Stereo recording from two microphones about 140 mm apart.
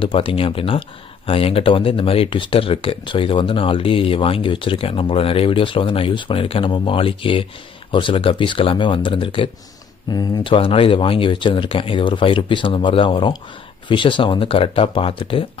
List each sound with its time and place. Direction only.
0.0 s speech: 40° left (ahead or behind)